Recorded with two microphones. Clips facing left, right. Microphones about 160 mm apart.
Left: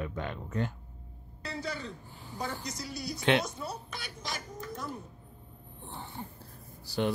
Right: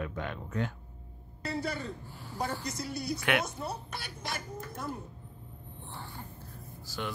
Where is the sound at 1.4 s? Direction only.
55° right (ahead or behind).